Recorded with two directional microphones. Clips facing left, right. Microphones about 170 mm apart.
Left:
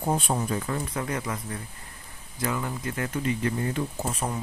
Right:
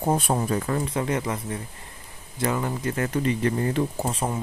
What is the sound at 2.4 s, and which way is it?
Speech, 40° right (ahead or behind).